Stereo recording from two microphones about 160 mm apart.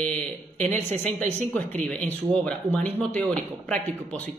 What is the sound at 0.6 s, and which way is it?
Speech, 50° right (ahead or behind).